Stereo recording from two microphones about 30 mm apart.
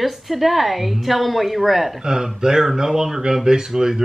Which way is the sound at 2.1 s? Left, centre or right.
Right.